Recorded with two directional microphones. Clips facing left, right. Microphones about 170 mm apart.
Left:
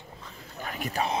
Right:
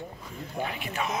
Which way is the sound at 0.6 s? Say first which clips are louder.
Left 1 dB; 45° left (ahead or behind).